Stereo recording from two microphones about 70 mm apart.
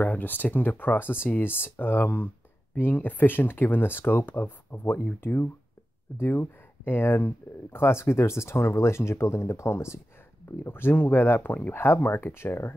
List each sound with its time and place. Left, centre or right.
0.0 s speech: left